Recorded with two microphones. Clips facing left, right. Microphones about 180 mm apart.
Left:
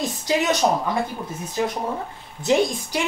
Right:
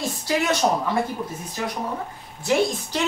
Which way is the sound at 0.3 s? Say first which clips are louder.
Left 1 dB; 20° left (ahead or behind).